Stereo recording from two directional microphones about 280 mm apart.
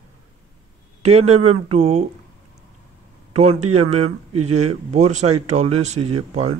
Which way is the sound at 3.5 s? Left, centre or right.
Right.